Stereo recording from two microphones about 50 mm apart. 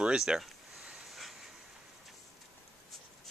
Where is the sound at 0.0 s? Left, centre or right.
Centre.